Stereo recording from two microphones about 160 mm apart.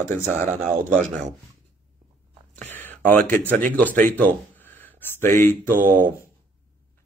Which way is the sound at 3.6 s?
55° right (ahead or behind).